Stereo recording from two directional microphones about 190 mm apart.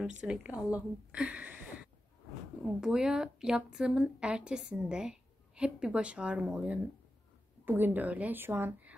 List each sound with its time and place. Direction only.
0.0 s a woman's voice: 5° right (ahead or behind)